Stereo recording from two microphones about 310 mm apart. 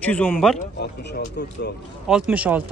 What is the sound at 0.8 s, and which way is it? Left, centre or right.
Speech, left.